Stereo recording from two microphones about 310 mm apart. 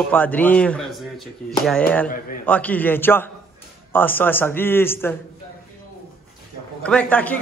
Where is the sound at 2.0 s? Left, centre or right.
Left.